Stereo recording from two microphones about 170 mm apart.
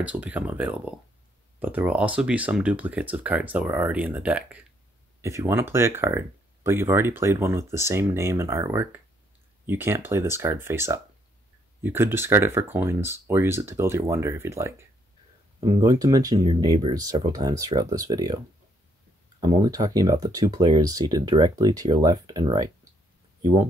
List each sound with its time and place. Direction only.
0.0 s speech: 10° right (ahead or behind)
15.6 s speech: 25° right (ahead or behind)
19.4 s speech: 25° right (ahead or behind)